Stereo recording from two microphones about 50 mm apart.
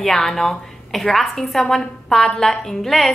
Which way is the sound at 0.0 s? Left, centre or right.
Centre.